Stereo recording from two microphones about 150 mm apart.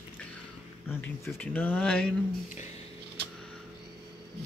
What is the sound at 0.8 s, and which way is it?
Speech, 15° left (ahead or behind).